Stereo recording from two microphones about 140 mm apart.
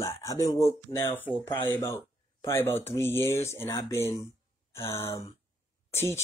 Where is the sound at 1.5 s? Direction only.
15° left (ahead or behind).